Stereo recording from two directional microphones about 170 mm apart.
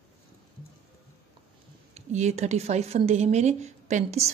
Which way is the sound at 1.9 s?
40° right (ahead or behind).